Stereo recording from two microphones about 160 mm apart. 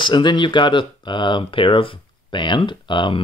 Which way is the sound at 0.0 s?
30° left (ahead or behind).